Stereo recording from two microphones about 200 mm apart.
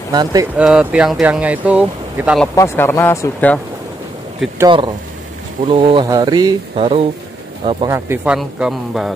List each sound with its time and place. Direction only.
0.1 s speech: 20° right (ahead or behind)
0.6 s speech: 5° right (ahead or behind)
2.4 s speech: 15° left (ahead or behind)
4.6 s speech: 25° right (ahead or behind)
7.9 s speech: 10° right (ahead or behind)